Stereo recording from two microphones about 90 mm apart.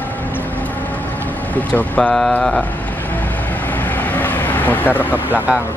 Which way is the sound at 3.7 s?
20° left (ahead or behind).